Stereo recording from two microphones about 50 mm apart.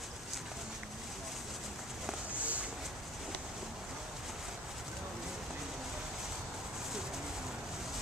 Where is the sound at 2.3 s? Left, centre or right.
Right.